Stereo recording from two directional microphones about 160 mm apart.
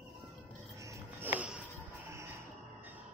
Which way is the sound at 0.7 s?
20° right (ahead or behind).